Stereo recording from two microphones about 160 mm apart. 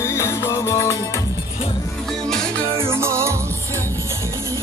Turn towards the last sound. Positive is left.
turn(degrees=-15)  # may be behind; listen again after turning